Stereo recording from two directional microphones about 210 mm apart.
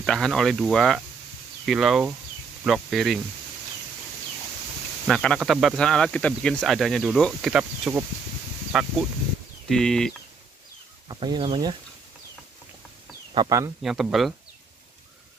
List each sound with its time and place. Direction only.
0.0 s speech: centre (ahead or behind)
5.0 s speech: 5° left (ahead or behind)
11.1 s speech: 20° right (ahead or behind)
13.3 s speech: 20° right (ahead or behind)
13.8 s speech: centre (ahead or behind)